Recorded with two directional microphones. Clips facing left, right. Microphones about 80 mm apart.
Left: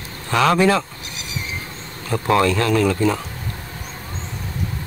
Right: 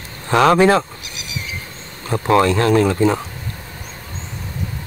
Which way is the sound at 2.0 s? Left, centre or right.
Right.